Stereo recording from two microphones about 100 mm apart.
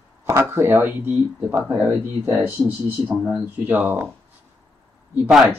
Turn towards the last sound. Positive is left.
turn(degrees=0)  # may be behind; listen again after turning